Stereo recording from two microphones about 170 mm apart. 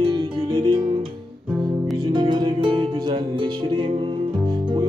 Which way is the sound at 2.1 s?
25° right (ahead or behind).